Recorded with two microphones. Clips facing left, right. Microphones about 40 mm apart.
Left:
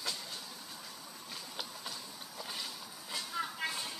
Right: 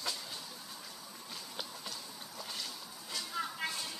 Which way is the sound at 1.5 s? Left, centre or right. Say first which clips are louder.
Even; centre.